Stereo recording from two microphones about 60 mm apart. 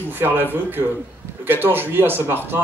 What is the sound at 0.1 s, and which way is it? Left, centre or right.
Speech, right.